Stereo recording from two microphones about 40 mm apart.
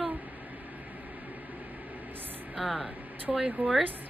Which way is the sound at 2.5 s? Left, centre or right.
Centre.